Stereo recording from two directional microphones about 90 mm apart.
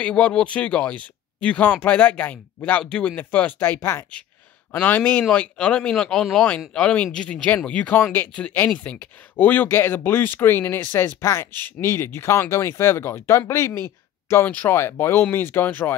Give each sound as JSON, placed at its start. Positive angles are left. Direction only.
{"t": 0.0, "sound": "speech", "side_deg": 10}